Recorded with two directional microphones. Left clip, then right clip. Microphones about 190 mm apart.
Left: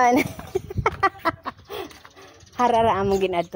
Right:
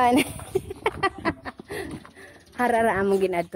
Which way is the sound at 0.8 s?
5° right (ahead or behind).